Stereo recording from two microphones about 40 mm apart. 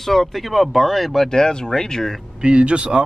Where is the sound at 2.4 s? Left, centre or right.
Right.